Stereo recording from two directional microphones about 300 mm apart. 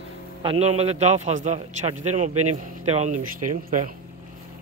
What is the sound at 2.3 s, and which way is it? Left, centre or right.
Speech, right.